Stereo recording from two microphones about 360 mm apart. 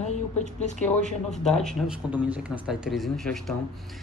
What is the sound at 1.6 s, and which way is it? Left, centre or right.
Speech, centre.